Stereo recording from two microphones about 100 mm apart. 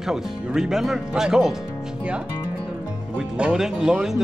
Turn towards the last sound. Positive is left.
turn(degrees=-5)  # may be behind; listen again after turning